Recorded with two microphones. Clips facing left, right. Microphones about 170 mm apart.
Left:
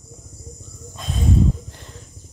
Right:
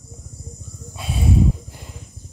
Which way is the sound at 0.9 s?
10° right (ahead or behind).